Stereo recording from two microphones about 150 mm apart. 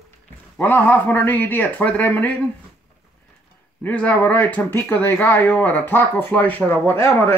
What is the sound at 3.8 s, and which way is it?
Speech, 10° left (ahead or behind).